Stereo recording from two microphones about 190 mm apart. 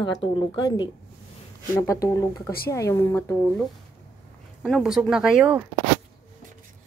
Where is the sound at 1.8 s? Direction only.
15° left (ahead or behind).